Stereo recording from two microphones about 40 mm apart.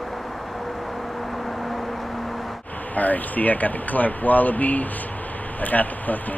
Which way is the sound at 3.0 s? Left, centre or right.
Left.